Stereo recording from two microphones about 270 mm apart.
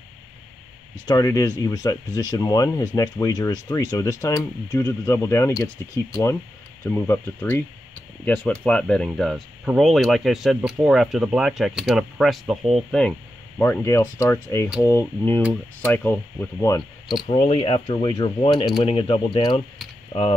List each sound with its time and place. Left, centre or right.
1.0 s speech: centre
6.8 s speech: centre
17.3 s speech: centre